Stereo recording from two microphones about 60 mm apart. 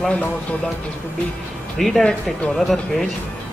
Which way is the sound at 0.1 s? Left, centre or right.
Left.